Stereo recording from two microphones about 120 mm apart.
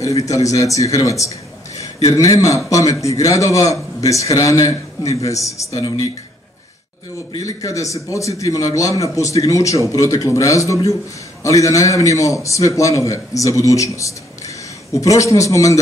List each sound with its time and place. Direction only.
0.0 s a man's voice: 25° left (ahead or behind)
7.3 s a man's voice: 30° left (ahead or behind)